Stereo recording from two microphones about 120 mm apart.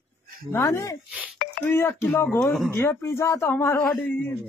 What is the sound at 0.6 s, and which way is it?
A man's voice, 30° left (ahead or behind).